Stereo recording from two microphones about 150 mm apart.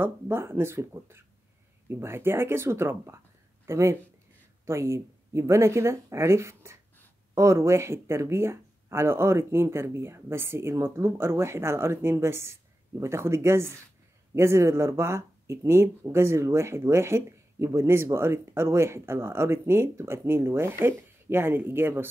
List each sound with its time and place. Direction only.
0.0 s speech: 15° right (ahead or behind)